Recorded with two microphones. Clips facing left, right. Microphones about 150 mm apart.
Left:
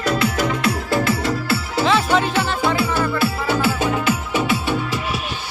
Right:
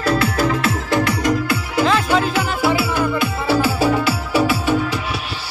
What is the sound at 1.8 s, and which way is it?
Music, centre (ahead or behind).